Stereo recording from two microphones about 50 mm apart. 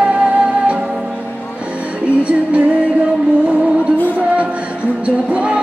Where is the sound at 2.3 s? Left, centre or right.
Right.